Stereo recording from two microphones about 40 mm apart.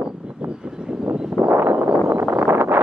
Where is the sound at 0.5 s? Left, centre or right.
Right.